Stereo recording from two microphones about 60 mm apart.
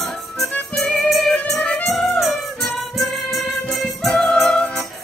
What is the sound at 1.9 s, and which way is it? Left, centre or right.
Music, centre.